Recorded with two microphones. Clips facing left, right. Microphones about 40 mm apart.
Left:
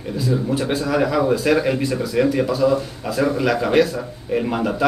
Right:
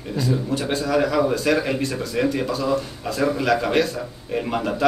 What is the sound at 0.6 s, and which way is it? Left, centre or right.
Speech, centre.